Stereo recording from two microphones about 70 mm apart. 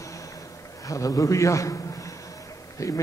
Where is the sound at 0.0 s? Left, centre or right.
Left.